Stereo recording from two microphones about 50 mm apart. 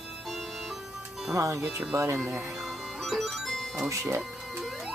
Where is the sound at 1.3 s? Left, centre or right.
Right.